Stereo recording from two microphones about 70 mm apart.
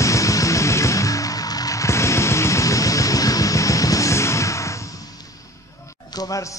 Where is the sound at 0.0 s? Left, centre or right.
Left.